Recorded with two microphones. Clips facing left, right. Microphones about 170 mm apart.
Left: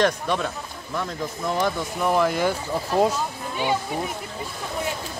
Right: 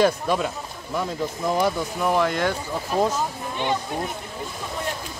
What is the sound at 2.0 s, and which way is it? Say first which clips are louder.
Speech: left 2 dB; centre (ahead or behind).